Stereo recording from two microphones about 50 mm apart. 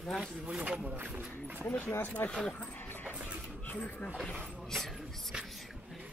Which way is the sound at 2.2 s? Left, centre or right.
Left.